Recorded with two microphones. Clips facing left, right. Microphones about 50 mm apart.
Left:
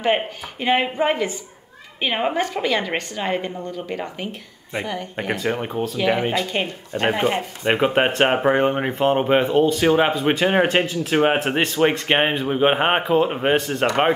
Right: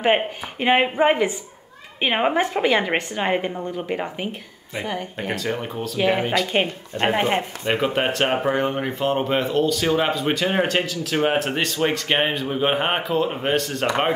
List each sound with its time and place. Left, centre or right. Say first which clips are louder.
0.0 s a woman's voice: right 1 dB; centre
5.3 s speech: left 3 dB; centre
5.9 s a woman's voice: right 1 dB; centre
6.5 s speech: right 2 dB; right
7.6 s speech: left 6 dB; left